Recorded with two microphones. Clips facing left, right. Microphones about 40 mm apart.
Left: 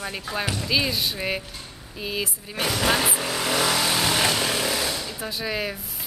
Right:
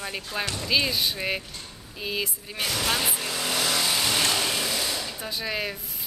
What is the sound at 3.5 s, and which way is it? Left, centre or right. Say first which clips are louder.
Vehicle: left 3 dB; left.